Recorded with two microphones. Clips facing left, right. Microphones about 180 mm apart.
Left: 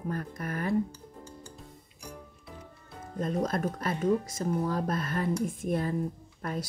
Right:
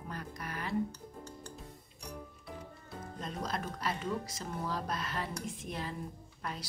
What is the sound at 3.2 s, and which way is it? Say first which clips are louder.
Speech: left 10 dB; 50° left (ahead or behind).